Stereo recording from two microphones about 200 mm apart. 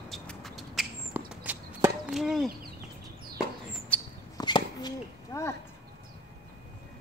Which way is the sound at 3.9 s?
5° left (ahead or behind).